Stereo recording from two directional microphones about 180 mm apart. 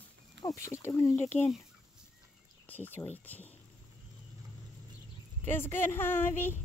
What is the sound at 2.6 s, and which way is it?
Speech, 10° left (ahead or behind).